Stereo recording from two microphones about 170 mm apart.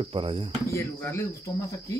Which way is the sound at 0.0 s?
30° right (ahead or behind).